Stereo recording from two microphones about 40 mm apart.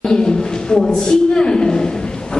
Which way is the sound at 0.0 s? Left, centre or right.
Centre.